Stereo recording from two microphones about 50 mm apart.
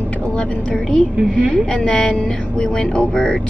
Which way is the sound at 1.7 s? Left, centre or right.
Centre.